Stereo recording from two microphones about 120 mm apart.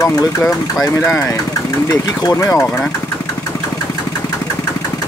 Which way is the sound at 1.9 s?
25° left (ahead or behind).